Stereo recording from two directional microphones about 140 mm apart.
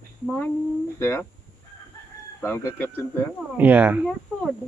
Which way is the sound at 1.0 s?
15° left (ahead or behind).